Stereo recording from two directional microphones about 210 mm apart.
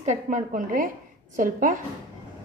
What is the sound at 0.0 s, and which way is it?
A woman's voice, 35° right (ahead or behind).